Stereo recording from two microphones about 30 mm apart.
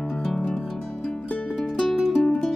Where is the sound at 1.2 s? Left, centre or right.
Left.